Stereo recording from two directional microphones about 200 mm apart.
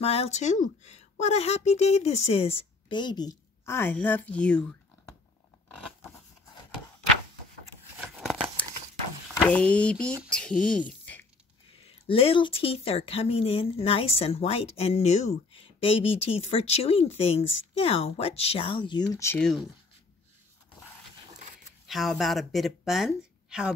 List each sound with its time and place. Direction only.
0.0 s a woman's voice: 30° left (ahead or behind); by 5.1 s 5° left (ahead or behind)
8.1 s a sound: centre (ahead or behind)
9.5 s speech: 5° left (ahead or behind)
11.8 s speech: 30° left (ahead or behind); by 19.7 s centre (ahead or behind)
21.8 s speech: centre (ahead or behind)